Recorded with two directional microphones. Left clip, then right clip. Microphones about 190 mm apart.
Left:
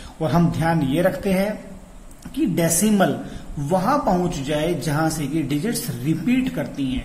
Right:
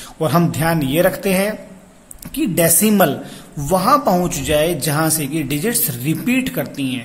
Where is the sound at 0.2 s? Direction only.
30° right (ahead or behind).